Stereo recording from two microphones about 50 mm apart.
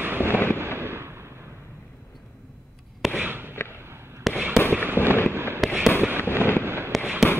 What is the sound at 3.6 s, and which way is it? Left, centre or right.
Fireworks, left.